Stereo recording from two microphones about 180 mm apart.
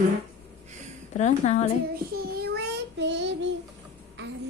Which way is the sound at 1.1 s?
40° left (ahead or behind).